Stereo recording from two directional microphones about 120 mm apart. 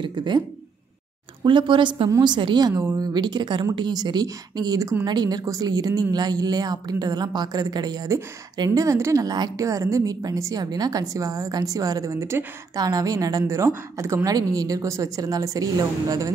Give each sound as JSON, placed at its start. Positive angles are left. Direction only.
{"t": 0.0, "sound": "speech", "side_deg": -40}
{"t": 1.4, "sound": "a woman's voice", "side_deg": -40}